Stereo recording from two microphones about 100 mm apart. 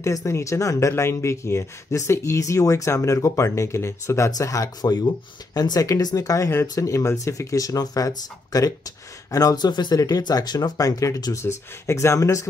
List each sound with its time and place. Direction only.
0.0 s speech: 30° left (ahead or behind)